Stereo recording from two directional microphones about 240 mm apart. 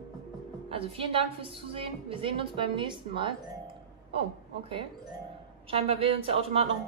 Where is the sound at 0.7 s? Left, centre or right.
Right.